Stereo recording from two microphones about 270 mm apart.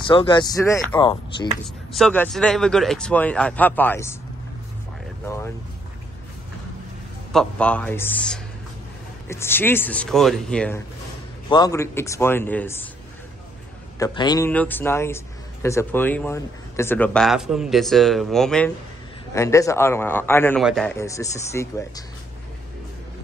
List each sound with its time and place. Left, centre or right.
0.0 s a man's voice: centre
1.9 s a man's voice: centre
5.2 s a man's voice: centre
7.3 s a man's voice: centre
11.4 s a man's voice: centre
13.9 s a man's voice: centre